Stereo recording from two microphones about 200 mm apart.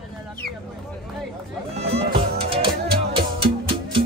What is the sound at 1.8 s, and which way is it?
Music, 30° right (ahead or behind).